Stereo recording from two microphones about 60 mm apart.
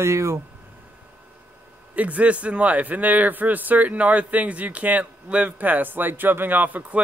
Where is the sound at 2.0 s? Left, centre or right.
Right.